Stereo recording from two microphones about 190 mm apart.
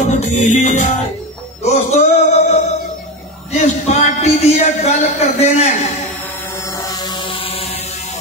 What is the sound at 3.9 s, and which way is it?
Music, 35° left (ahead or behind).